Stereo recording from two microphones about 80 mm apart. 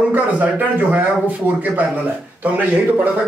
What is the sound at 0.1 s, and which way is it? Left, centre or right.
A man's voice, centre.